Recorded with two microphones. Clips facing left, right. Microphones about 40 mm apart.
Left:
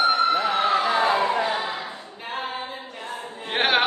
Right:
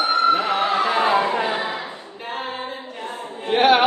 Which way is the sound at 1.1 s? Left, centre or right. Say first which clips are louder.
Right 2 dB; centre.